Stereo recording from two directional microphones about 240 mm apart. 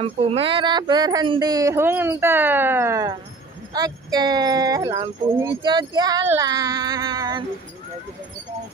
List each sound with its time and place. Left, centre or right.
0.0 s speech: right